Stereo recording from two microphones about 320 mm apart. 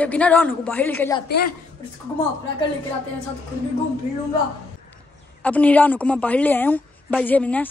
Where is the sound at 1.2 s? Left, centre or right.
Left.